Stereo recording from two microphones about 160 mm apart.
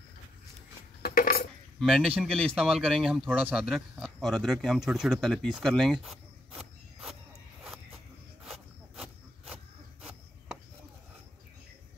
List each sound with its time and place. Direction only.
1.0 s dishes: 65° left (ahead or behind)
1.8 s speech: centre (ahead or behind)
8.5 s a sound: centre (ahead or behind)